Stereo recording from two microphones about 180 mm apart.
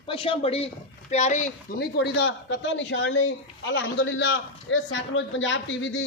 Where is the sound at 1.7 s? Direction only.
65° left (ahead or behind).